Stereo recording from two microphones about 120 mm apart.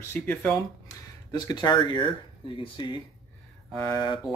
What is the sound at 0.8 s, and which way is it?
Speech, 35° left (ahead or behind).